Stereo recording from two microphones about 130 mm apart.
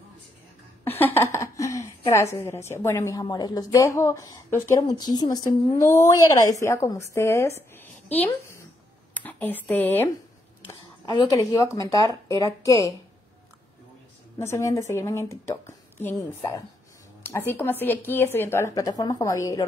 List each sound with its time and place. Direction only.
0.9 s a woman's voice: 15° left (ahead or behind)
10.7 s a sound: 30° left (ahead or behind)
11.3 s a woman's voice: 20° left (ahead or behind)
14.4 s a woman's voice: 20° left (ahead or behind)